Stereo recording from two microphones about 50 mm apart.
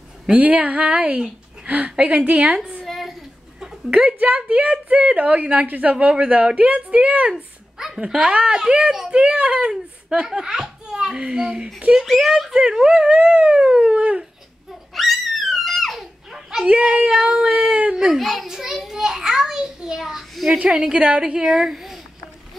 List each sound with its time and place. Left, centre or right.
0.3 s a woman's voice: right
2.8 s a sound: centre
3.9 s a woman's voice: right
7.3 s a sound: centre
8.0 s a woman's voice: centre
12.1 s speech: centre
12.5 s a woman's voice: centre
15.0 s a sound: centre
16.6 s a woman's voice: right
17.1 s a woman's voice: centre
17.5 s a woman's voice: right
17.9 s a woman's voice: centre